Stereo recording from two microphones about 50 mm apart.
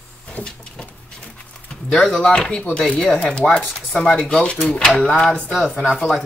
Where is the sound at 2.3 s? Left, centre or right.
Centre.